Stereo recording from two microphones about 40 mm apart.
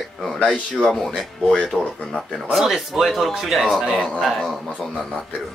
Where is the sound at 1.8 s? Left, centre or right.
Centre.